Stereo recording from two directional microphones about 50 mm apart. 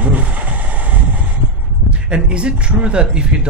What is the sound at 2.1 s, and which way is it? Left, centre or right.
Speech, right.